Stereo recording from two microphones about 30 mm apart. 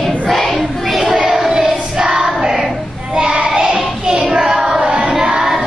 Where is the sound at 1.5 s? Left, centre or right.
Right.